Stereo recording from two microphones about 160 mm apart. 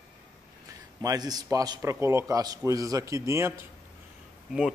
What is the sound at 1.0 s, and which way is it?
A man's voice, 25° right (ahead or behind).